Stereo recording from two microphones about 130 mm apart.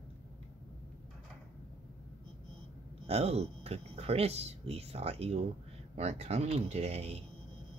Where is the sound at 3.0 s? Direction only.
55° right (ahead or behind).